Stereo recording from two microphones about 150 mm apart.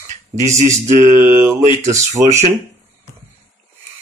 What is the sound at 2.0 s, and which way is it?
Speech, 50° right (ahead or behind).